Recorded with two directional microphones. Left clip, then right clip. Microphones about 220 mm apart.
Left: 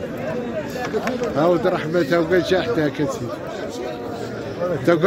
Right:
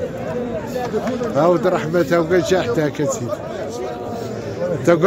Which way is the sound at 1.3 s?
5° right (ahead or behind).